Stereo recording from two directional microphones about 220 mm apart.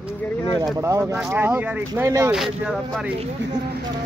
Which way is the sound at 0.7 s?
15° right (ahead or behind).